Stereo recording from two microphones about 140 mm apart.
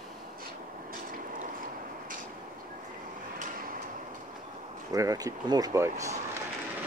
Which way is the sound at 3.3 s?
75° right (ahead or behind).